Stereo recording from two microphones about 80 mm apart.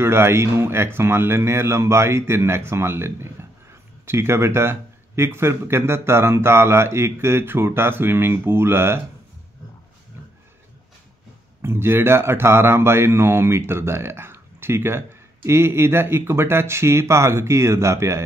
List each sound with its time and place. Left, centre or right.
0.0 s speech: right
11.6 s speech: right